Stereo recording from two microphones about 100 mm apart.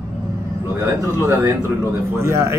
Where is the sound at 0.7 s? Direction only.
25° right (ahead or behind).